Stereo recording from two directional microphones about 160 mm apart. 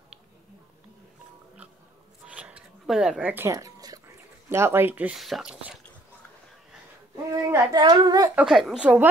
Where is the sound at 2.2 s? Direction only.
10° right (ahead or behind).